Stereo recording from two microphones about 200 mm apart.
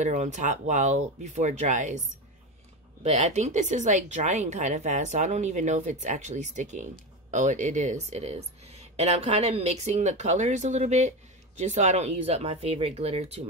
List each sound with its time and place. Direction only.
0.0 s a woman's voice: 35° right (ahead or behind)